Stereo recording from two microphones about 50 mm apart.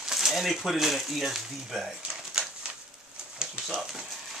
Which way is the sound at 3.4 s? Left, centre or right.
Centre.